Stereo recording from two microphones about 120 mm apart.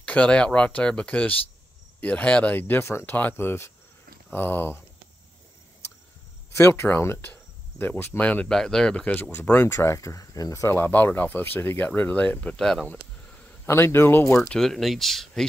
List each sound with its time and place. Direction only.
0.0 s speech: 10° left (ahead or behind)
6.5 s speech: 20° left (ahead or behind); by 13.0 s 5° left (ahead or behind)
13.7 s speech: 20° left (ahead or behind)
14.5 s speech: 5° left (ahead or behind)